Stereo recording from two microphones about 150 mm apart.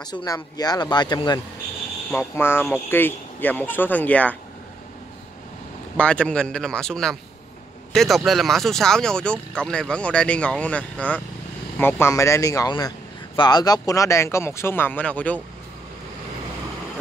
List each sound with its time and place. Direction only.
0.0 s speech: 25° left (ahead or behind)
2.0 s speech: 15° left (ahead or behind)
5.9 s speech: 5° left (ahead or behind)